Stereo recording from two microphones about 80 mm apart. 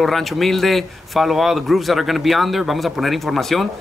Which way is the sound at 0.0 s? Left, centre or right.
Centre.